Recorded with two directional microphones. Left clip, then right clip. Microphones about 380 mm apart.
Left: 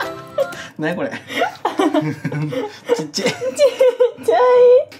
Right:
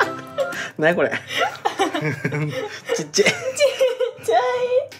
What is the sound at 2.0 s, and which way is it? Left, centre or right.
Speech, centre.